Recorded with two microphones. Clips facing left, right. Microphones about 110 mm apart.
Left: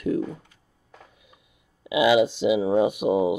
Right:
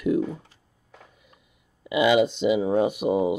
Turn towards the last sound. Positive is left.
turn(degrees=10)  # may be behind; listen again after turning